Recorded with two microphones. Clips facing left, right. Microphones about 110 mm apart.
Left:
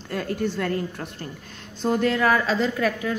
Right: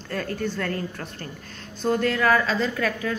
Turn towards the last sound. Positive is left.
turn(degrees=20)  # may be behind; listen again after turning